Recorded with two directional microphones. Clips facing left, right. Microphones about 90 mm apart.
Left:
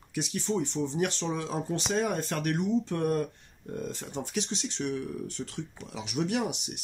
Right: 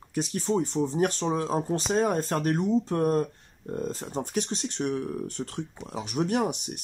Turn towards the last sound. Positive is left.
turn(degrees=-45)  # may be behind; listen again after turning